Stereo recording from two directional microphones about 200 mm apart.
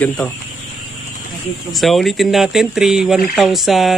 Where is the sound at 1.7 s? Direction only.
Centre (ahead or behind).